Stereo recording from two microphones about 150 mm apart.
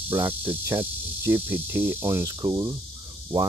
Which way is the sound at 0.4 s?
10° right (ahead or behind).